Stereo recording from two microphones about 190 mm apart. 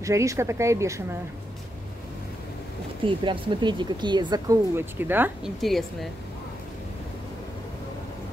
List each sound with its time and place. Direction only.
0.0 s speech: 15° right (ahead or behind)
3.0 s speech: 25° right (ahead or behind); by 5.5 s 10° right (ahead or behind)
5.6 s speech: centre (ahead or behind)